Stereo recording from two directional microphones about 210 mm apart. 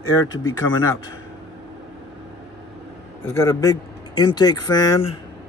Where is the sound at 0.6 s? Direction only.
15° left (ahead or behind).